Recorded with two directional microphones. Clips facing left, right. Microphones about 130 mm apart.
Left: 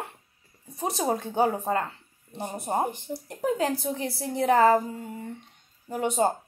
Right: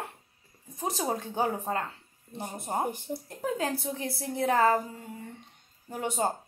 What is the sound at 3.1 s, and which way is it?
Speech, 15° right (ahead or behind).